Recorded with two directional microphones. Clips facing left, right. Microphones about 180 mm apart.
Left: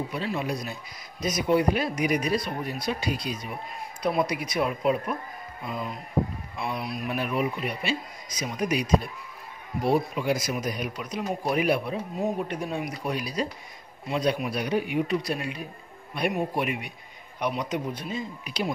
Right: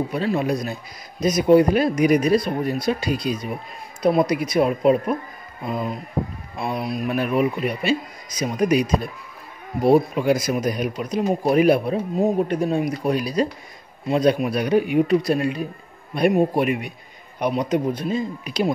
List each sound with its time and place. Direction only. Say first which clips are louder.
0.1 s speech: right 7 dB; 45° right (ahead or behind)
9.8 s speech: right 8 dB; 55° right (ahead or behind)